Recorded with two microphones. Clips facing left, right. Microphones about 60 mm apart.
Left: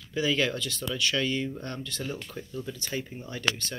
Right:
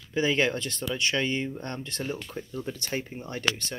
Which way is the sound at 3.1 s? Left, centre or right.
Right.